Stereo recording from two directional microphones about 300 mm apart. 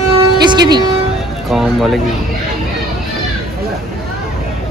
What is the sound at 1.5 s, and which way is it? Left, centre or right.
Speech, centre.